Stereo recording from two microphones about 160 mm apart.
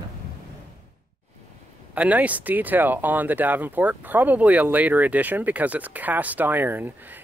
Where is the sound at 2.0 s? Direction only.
10° right (ahead or behind).